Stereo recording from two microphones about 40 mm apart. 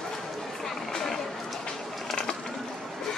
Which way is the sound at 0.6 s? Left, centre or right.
Centre.